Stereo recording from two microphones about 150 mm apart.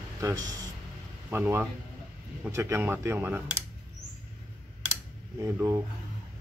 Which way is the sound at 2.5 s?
20° right (ahead or behind).